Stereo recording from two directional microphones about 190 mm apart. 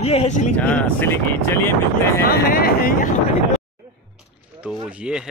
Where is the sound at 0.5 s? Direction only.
10° left (ahead or behind).